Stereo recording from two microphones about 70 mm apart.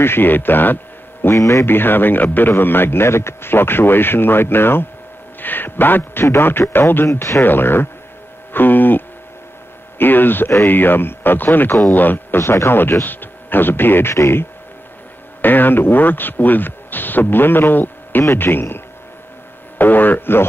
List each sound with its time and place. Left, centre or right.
0.0 s speech: left
1.3 s speech: left
1.7 s speech: left
7.1 s speech: left
7.4 s speech: left
12.4 s speech: left
15.4 s speech: left
19.8 s speech: left